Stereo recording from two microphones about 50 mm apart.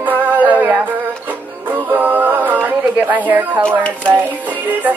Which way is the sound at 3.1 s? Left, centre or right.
Right.